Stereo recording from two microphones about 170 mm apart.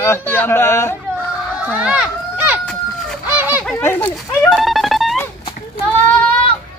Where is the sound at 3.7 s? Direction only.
15° left (ahead or behind).